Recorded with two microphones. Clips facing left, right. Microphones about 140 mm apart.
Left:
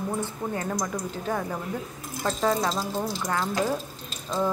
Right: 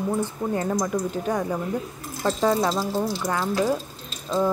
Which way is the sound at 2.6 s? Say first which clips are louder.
Right 4 dB; 5° right (ahead or behind).